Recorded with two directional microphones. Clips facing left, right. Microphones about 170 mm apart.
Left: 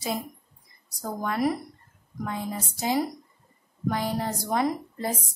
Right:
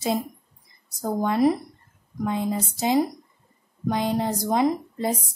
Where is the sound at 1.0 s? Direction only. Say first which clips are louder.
Right 6 dB; 25° right (ahead or behind).